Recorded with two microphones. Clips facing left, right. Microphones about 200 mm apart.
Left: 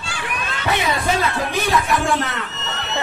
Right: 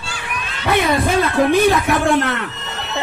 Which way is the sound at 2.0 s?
55° right (ahead or behind).